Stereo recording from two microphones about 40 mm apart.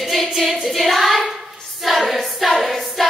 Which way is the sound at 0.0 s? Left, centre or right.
Centre.